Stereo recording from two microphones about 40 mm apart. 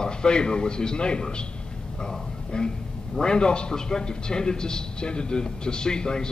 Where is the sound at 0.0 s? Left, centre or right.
Left.